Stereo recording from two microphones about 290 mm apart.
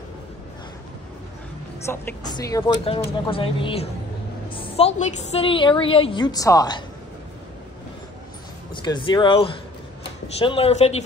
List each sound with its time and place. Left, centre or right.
1.9 s a woman's voice: centre
8.7 s a woman's voice: centre